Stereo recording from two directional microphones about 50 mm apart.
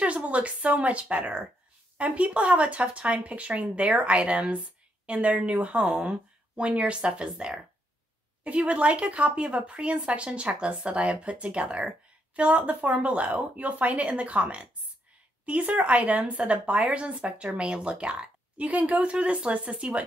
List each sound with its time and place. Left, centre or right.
0.0 s a woman's voice: right